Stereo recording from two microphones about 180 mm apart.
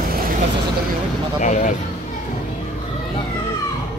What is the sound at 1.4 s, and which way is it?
Speech, 45° left (ahead or behind).